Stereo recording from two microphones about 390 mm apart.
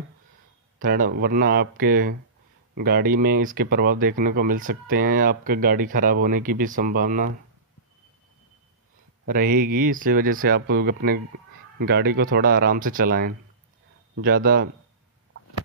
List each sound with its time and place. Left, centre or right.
0.7 s speech: right
9.2 s speech: right